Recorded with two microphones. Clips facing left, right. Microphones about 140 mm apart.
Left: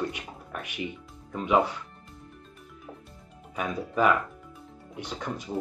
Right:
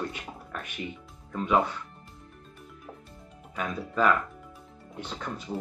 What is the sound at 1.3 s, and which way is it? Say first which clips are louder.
Speech: left 1 dB; 15° left (ahead or behind).